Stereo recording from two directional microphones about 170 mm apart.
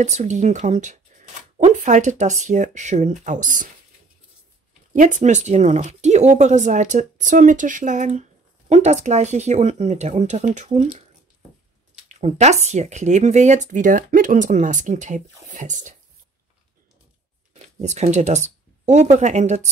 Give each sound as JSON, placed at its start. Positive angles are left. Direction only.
{"t": 0.0, "sound": "speech", "side_deg": -45}
{"t": 4.9, "sound": "speech", "side_deg": -50}
{"t": 12.2, "sound": "speech", "side_deg": -40}
{"t": 17.7, "sound": "speech", "side_deg": -40}